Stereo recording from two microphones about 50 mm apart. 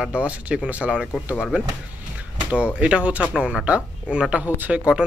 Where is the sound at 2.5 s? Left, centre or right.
Right.